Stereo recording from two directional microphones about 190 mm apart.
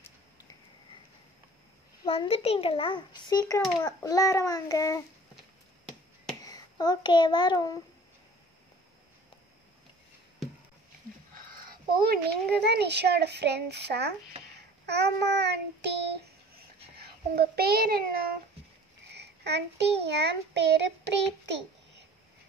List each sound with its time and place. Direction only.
2.0 s a child's voice: 30° left (ahead or behind)
6.4 s a child's voice: 20° left (ahead or behind)
11.3 s speech: 50° right (ahead or behind)
14.9 s child singing: 65° right (ahead or behind)
16.9 s a child's voice: 55° right (ahead or behind)
19.1 s child singing: 65° right (ahead or behind)